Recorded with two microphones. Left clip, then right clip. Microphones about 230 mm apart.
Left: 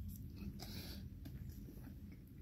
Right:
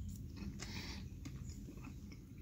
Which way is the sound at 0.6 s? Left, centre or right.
Centre.